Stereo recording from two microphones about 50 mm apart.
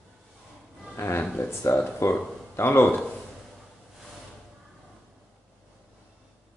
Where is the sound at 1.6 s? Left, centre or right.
Left.